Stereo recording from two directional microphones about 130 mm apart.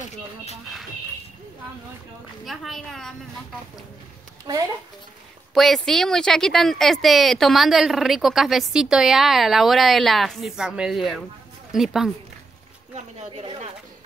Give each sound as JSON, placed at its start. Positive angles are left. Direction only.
{"t": 2.4, "sound": "speech", "side_deg": 0}
{"t": 4.5, "sound": "a woman's voice", "side_deg": -30}
{"t": 5.5, "sound": "speech", "side_deg": 0}